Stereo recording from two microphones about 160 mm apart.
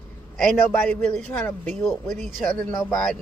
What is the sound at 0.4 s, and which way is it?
A man's voice, centre (ahead or behind).